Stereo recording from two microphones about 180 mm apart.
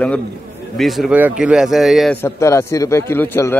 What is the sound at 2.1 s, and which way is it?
A man's voice, 15° left (ahead or behind).